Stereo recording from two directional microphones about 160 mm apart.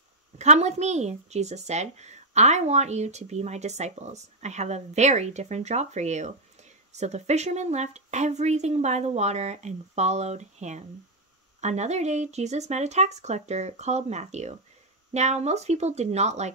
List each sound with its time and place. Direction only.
0.4 s speech: 45° right (ahead or behind)